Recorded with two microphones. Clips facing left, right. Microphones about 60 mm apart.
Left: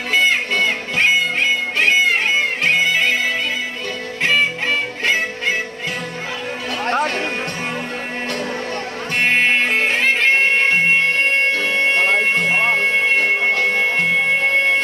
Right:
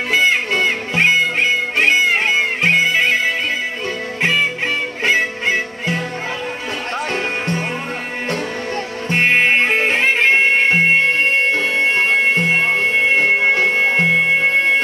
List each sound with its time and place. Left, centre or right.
0.1 s music: centre
7.1 s music: right
9.1 s music: right
11.7 s music: centre